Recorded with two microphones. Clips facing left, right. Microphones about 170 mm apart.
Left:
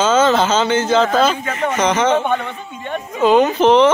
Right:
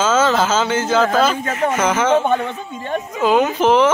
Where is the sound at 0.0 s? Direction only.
5° right (ahead or behind).